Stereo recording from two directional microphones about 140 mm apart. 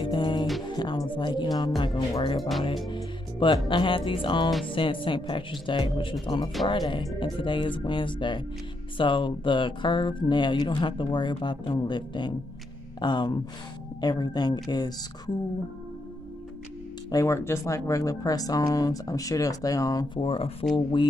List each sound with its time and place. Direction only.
0.0 s music: 30° left (ahead or behind)
2.0 s speech: 35° left (ahead or behind)
17.1 s speech: 20° left (ahead or behind)
20.2 s speech: 40° left (ahead or behind)